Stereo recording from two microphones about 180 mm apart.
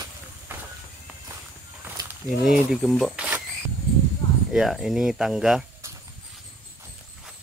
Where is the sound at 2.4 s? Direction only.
Centre (ahead or behind).